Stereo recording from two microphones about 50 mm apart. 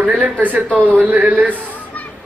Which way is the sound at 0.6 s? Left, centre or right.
Left.